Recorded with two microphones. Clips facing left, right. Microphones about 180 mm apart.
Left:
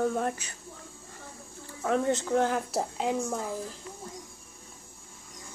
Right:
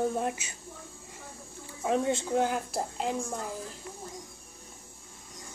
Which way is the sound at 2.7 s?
Centre (ahead or behind).